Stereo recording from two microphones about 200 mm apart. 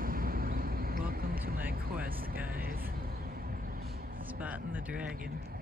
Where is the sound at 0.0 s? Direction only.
45° right (ahead or behind).